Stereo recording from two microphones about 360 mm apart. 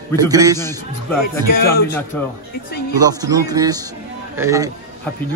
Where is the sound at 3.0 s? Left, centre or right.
Centre.